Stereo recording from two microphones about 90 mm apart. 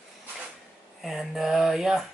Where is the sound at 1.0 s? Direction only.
Centre (ahead or behind).